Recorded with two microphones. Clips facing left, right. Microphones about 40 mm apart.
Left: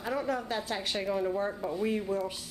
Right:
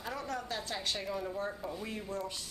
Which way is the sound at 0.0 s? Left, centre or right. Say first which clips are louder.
Left 7 dB; centre.